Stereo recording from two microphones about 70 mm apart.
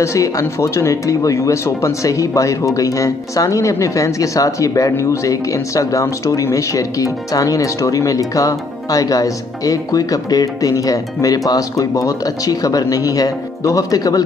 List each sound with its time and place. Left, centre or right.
0.0 s speech: left